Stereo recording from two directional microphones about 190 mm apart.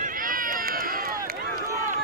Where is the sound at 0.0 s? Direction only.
45° right (ahead or behind).